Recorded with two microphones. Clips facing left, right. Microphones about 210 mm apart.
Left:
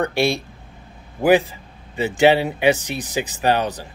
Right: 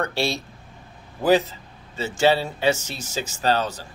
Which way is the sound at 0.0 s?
15° left (ahead or behind).